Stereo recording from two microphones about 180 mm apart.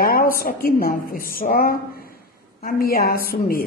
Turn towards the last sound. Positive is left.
turn(degrees=55)  # may be behind; listen again after turning